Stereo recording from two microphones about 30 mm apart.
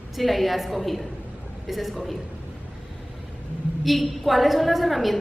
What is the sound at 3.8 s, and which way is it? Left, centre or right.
A woman's voice, centre.